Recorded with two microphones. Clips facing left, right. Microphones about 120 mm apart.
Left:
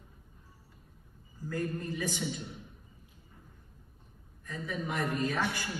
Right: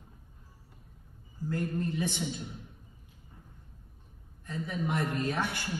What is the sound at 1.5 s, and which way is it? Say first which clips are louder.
Speech: right 2 dB; 20° right (ahead or behind).